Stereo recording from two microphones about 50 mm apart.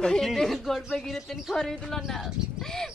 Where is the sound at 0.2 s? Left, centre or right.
Centre.